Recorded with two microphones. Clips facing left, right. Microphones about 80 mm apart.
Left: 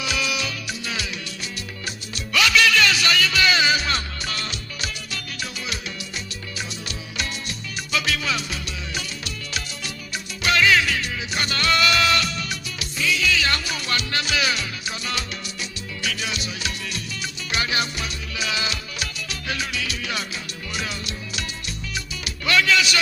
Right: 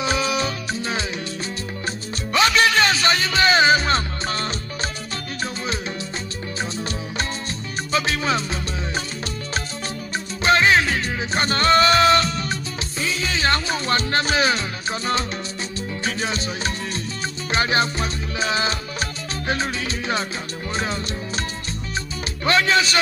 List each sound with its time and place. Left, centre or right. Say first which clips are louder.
0.0 s music: right 5 dB; right
2.3 s music: right 2 dB; right
7.9 s music: right 3 dB; right
10.4 s music: right 2 dB; right
22.4 s speech: right 2 dB; right